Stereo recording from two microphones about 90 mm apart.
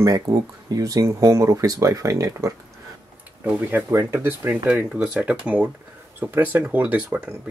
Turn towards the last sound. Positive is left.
turn(degrees=-15)  # may be behind; listen again after turning